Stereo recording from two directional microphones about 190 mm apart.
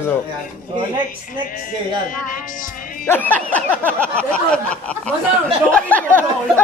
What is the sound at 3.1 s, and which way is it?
Speech, 10° left (ahead or behind).